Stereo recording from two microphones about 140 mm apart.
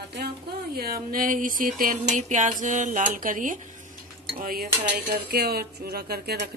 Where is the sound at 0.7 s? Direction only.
90° right; by 3.6 s 75° right (ahead or behind).